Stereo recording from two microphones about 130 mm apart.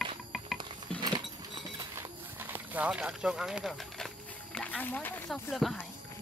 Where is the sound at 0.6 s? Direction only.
35° right (ahead or behind).